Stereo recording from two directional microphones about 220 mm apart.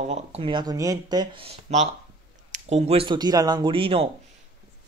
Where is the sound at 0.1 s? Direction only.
25° right (ahead or behind).